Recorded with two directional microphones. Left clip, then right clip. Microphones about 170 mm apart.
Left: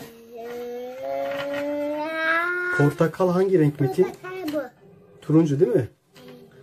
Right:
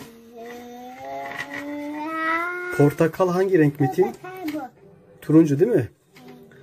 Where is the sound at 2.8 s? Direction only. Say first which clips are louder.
Right 5 dB; 20° right (ahead or behind).